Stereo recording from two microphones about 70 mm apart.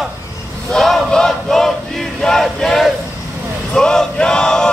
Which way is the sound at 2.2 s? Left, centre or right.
Centre.